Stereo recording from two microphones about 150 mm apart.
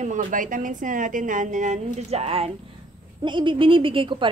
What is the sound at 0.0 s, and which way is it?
A woman's voice, 60° right (ahead or behind).